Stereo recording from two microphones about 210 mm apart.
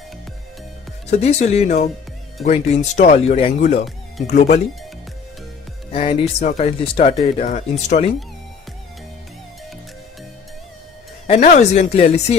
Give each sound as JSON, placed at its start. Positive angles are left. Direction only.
{"t": 1.1, "sound": "speech", "side_deg": 30}
{"t": 5.9, "sound": "speech", "side_deg": 30}
{"t": 11.4, "sound": "speech", "side_deg": 35}